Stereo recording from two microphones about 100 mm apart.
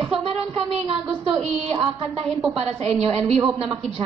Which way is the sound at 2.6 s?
90° right.